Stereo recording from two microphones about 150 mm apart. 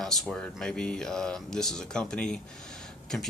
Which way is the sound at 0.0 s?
5° left (ahead or behind).